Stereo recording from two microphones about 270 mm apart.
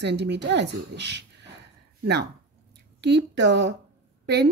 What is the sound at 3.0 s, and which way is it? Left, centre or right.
Speech, right.